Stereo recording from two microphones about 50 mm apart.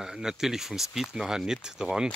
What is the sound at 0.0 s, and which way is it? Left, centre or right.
Speech, centre.